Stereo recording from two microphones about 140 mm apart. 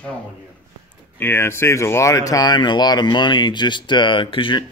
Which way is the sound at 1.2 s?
15° left (ahead or behind).